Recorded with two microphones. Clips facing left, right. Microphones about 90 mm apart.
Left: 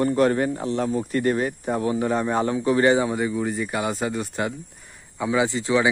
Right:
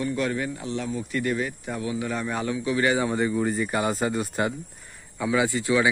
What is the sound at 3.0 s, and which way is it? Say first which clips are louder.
Speech: even; 5° left (ahead or behind).